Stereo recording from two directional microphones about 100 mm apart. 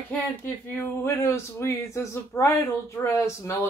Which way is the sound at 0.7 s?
30° left (ahead or behind).